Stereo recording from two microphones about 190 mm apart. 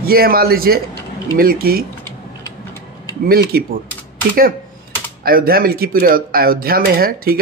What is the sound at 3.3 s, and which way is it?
Speech, 55° right (ahead or behind).